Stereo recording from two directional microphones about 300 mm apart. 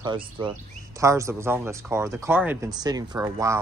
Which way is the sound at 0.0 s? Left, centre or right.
Centre.